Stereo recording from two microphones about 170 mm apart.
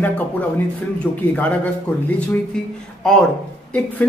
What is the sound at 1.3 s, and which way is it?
Speech, 10° left (ahead or behind).